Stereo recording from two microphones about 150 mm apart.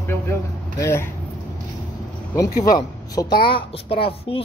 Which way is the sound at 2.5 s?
70° left (ahead or behind).